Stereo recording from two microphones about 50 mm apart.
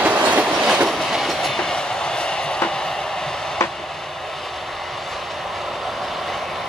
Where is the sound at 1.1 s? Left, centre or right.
Centre.